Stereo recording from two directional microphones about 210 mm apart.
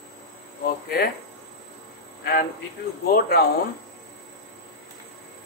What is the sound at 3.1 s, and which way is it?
Speech, 50° left (ahead or behind).